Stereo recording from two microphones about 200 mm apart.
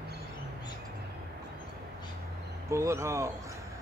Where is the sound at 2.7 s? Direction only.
15° right (ahead or behind).